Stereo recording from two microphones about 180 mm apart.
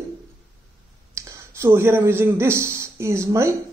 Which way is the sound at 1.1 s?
15° right (ahead or behind).